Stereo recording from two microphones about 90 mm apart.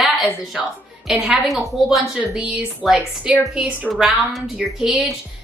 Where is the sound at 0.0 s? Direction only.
Centre (ahead or behind).